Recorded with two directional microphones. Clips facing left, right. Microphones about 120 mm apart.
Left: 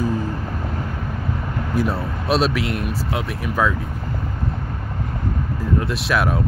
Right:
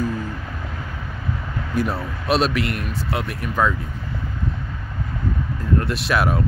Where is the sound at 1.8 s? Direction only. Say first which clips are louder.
Even; centre (ahead or behind).